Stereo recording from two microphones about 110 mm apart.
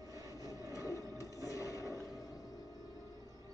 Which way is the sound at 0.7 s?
30° left (ahead or behind).